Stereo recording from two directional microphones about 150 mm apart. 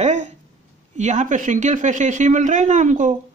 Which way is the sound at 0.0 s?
50° right (ahead or behind).